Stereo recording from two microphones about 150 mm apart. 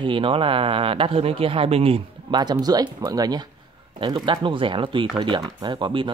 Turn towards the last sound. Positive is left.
turn(degrees=-35)  # may be behind; listen again after turning